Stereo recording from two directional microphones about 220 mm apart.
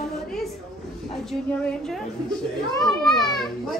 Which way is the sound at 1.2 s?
Centre (ahead or behind).